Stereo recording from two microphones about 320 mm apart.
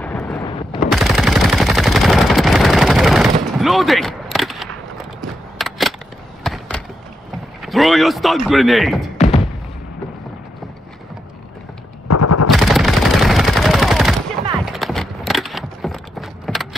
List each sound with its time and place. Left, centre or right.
0.0 s a sound: centre
0.5 s machine gun: centre
0.8 s machine gun: centre
3.5 s a sound: centre
6.4 s basketball bounce: centre
7.6 s speech: centre
9.2 s thump: centre
12.1 s machine gun: left
12.4 s gunshot: centre
14.6 s a sound: centre